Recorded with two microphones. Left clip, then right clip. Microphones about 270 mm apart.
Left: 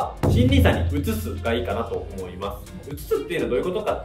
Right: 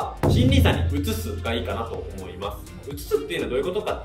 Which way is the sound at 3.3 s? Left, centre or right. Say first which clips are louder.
Left 2 dB; centre.